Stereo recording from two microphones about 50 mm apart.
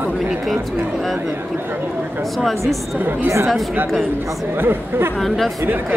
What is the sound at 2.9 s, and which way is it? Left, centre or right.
Speech, right.